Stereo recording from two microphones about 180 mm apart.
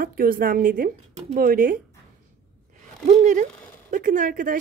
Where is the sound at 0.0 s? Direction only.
55° right (ahead or behind).